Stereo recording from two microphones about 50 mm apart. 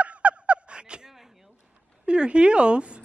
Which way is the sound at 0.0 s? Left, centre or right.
Right.